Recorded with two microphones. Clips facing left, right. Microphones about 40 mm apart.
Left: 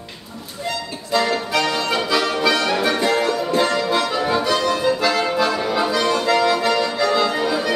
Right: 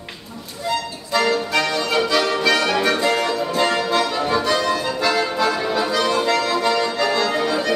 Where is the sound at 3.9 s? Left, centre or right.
Centre.